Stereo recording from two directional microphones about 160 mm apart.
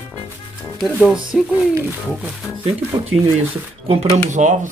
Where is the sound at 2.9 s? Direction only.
15° right (ahead or behind).